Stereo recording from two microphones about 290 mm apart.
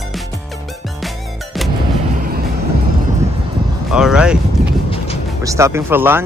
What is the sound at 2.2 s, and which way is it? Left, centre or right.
Vehicle, right.